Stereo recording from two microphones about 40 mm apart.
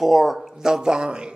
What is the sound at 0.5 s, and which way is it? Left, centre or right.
Speech, centre.